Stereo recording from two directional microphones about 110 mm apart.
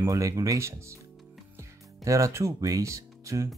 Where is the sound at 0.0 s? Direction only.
30° right (ahead or behind).